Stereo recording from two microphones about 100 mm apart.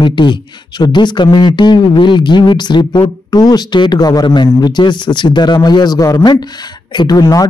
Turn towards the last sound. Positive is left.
turn(degrees=40)  # may be behind; listen again after turning